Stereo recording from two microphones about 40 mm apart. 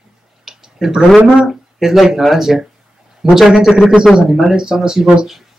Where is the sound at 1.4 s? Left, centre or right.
Centre.